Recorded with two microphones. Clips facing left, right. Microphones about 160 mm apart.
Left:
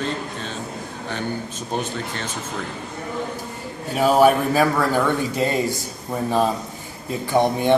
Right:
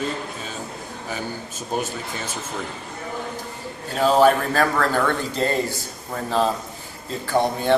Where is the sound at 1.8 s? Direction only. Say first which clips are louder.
Left 1 dB; 10° right (ahead or behind).